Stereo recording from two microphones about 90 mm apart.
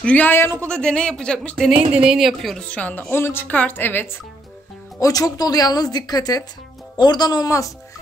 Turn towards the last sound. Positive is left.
turn(degrees=50)  # may be behind; listen again after turning